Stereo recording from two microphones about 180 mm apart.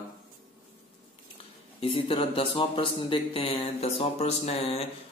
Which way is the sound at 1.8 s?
30° left (ahead or behind).